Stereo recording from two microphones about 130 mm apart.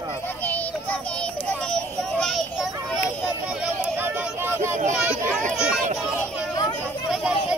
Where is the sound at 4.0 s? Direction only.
15° right (ahead or behind).